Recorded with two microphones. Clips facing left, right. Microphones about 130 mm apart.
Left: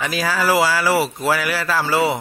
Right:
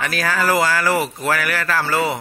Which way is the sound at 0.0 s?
15° left (ahead or behind).